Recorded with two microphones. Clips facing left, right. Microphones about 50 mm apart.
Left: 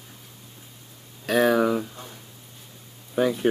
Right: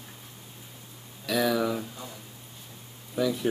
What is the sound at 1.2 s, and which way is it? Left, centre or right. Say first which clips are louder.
Speech: left 6 dB; left.